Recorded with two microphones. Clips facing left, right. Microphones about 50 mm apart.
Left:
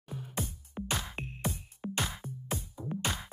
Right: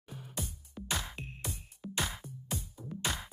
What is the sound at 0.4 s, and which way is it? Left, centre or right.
Music, left.